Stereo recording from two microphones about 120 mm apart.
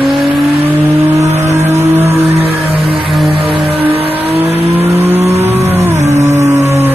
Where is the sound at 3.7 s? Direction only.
55° right (ahead or behind).